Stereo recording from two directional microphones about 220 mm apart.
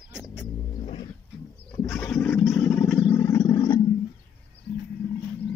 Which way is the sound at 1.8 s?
5° left (ahead or behind).